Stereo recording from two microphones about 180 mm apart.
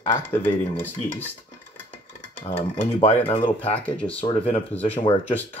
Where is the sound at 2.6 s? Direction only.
35° left (ahead or behind).